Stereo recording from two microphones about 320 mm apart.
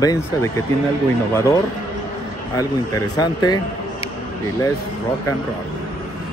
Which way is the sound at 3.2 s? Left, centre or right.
Centre.